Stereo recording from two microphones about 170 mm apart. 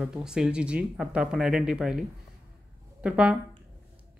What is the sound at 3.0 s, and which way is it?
Speech, 5° right (ahead or behind).